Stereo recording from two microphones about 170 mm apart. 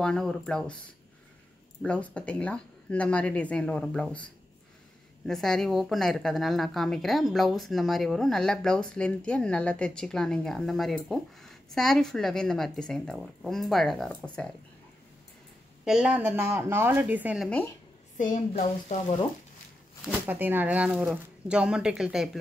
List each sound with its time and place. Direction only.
0.0 s speech: 5° left (ahead or behind)
1.8 s speech: 5° left (ahead or behind)
15.8 s a woman's voice: 5° right (ahead or behind)
18.1 s a woman's voice: 50° left (ahead or behind)
18.6 s speech: 40° left (ahead or behind)
20.1 s speech: 10° right (ahead or behind)